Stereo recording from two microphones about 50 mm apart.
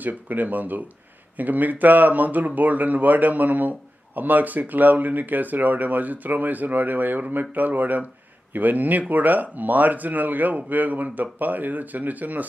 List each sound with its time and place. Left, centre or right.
0.0 s speech: right